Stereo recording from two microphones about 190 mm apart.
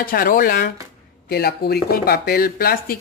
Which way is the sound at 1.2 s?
55° left (ahead or behind).